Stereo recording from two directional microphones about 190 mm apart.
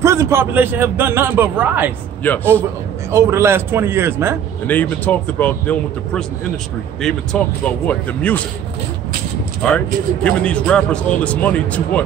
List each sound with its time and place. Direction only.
0.0 s a man's voice: 15° right (ahead or behind)
2.2 s a man's voice: 10° left (ahead or behind)
3.1 s a man's voice: 15° right (ahead or behind)
4.6 s a man's voice: 10° left (ahead or behind)
9.6 s a man's voice: 5° left (ahead or behind)